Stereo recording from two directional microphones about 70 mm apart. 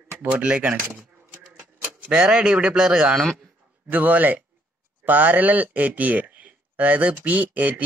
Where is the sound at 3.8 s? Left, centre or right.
Right.